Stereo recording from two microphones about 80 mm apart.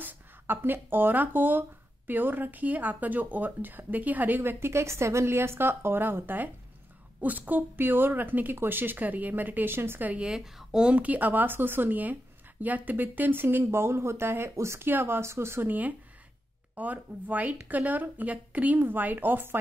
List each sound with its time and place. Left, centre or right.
0.0 s speech: right
16.7 s speech: right